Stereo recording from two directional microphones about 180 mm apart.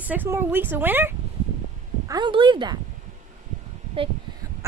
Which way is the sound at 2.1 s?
25° right (ahead or behind).